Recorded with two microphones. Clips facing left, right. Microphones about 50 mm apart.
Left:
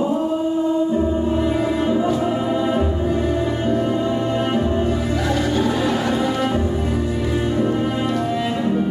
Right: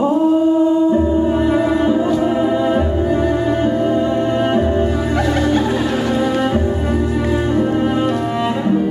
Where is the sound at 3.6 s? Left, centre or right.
Centre.